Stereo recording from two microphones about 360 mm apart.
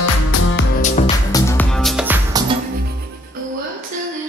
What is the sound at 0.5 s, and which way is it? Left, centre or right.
Music, centre.